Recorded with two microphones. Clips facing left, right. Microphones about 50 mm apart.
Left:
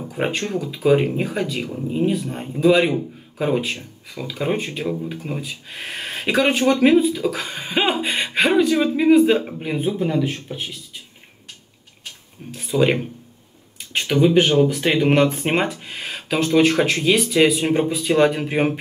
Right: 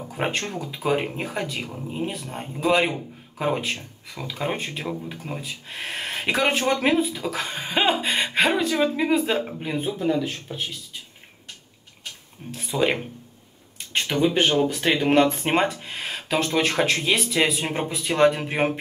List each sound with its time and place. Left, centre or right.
0.1 s speech: centre
0.6 s speech: centre
7.3 s a sound: centre
8.6 s speech: centre
9.1 s a sound: centre
10.2 s speech: centre
12.6 s speech: centre
13.9 s a sound: centre
14.3 s speech: centre